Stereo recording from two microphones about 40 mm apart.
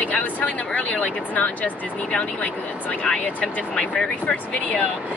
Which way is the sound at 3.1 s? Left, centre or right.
Centre.